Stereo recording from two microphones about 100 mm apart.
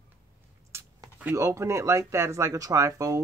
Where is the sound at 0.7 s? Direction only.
25° right (ahead or behind).